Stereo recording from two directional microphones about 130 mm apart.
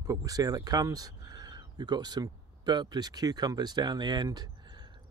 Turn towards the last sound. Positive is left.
turn(degrees=-35)  # may be behind; listen again after turning